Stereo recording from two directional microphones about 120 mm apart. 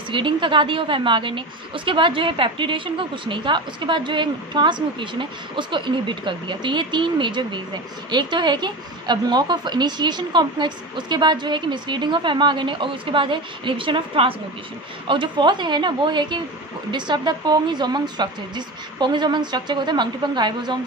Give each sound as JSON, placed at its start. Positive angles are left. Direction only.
{"t": 0.1, "sound": "a woman's voice", "side_deg": -45}